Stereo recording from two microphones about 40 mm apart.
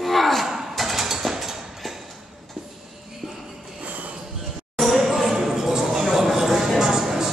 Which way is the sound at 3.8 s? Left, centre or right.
Right.